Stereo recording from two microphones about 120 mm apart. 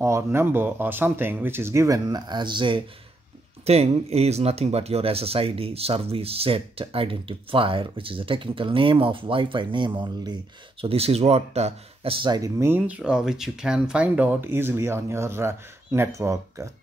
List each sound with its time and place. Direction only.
0.0 s speech: 20° right (ahead or behind); by 2.8 s 40° right (ahead or behind)
3.6 s speech: 60° right (ahead or behind); by 10.3 s 40° right (ahead or behind)
10.8 s speech: 55° right (ahead or behind)
12.3 s speech: 30° right (ahead or behind)